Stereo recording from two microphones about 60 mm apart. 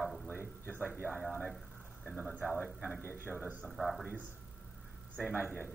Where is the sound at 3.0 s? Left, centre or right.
Right.